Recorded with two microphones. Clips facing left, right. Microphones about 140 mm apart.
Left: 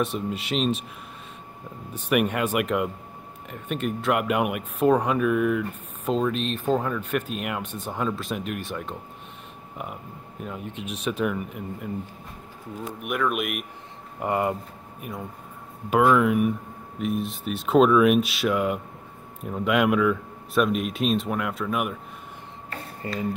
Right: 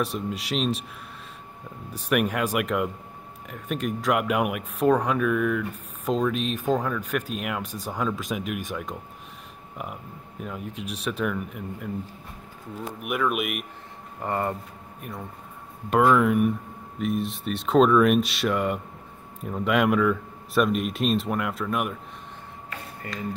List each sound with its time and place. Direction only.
0.0 s speech: centre (ahead or behind)
2.2 s speech: centre (ahead or behind)
8.3 s speech: 5° right (ahead or behind)
10.4 s speech: centre (ahead or behind)
14.2 s speech: 10° left (ahead or behind)
22.7 s a sound: 30° left (ahead or behind)